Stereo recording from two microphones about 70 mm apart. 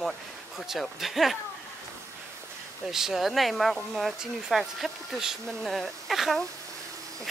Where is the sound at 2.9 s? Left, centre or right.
Centre.